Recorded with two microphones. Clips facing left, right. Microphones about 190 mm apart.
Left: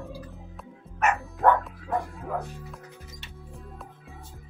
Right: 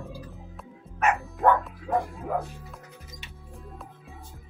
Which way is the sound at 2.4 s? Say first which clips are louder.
Left 1 dB; centre (ahead or behind).